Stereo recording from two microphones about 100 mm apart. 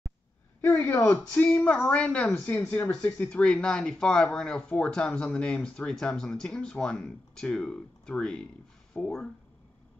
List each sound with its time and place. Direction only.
0.6 s speech: 20° left (ahead or behind)